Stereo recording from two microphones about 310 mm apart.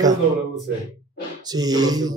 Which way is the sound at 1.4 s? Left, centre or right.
Centre.